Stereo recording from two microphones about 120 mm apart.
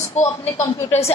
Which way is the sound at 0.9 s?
60° left (ahead or behind).